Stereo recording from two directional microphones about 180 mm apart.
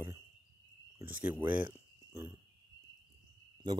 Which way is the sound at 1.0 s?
10° right (ahead or behind).